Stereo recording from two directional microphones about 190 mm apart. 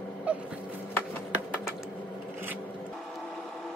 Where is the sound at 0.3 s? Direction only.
5° right (ahead or behind).